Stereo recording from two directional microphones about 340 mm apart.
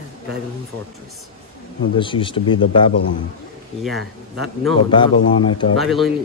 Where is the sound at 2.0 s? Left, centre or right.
Centre.